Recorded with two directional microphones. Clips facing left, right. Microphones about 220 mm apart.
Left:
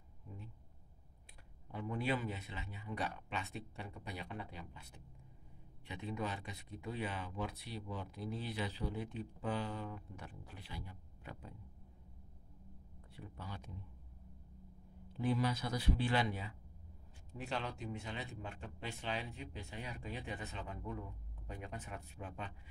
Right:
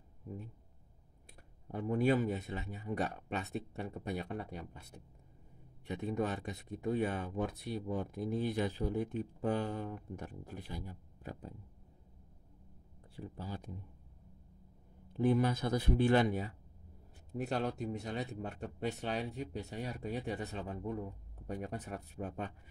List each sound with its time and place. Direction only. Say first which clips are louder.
1.7 s speech: right 8 dB; 45° right (ahead or behind)
13.1 s speech: right 6 dB; 35° right (ahead or behind)
15.1 s speech: right 6 dB; 50° right (ahead or behind)